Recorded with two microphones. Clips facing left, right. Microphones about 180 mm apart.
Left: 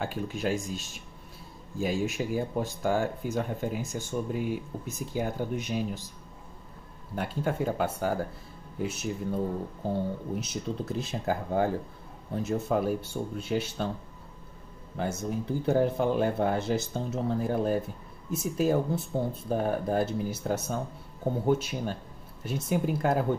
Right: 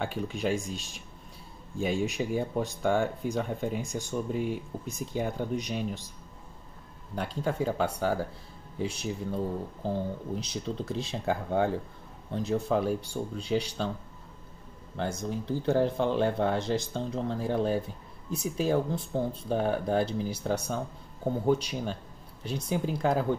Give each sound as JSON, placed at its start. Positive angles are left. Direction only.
{"t": 0.0, "sound": "speech", "side_deg": 0}
{"t": 7.2, "sound": "speech", "side_deg": 5}
{"t": 15.0, "sound": "speech", "side_deg": 5}